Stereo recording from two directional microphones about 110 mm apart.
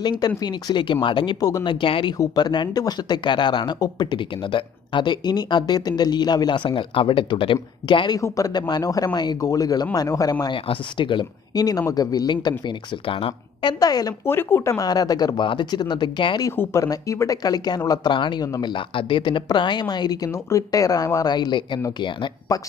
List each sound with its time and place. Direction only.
0.0 s speech: 40° left (ahead or behind)
2.1 s speech: 40° left (ahead or behind)
8.2 s speech: 35° left (ahead or behind)
10.4 s speech: 50° left (ahead or behind)
13.7 s speech: 35° left (ahead or behind)
14.2 s speech: 20° left (ahead or behind); by 16.3 s 45° left (ahead or behind)
16.5 s speech: 25° left (ahead or behind)
20.2 s speech: 25° left (ahead or behind); by 21.8 s 40° left (ahead or behind)
22.5 s speech: 30° left (ahead or behind)